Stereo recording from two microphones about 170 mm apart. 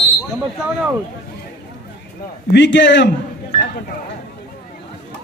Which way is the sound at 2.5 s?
90° left.